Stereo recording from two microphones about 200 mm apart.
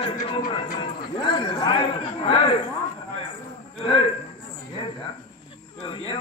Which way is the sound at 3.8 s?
30° left (ahead or behind).